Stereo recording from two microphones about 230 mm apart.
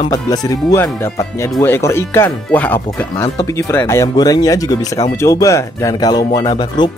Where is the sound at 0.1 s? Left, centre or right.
Centre.